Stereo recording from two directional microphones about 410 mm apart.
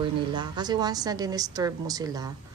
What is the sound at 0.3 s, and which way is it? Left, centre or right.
A woman's voice, centre.